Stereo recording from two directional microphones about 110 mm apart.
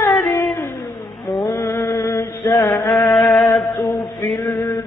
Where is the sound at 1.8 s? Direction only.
20° left (ahead or behind).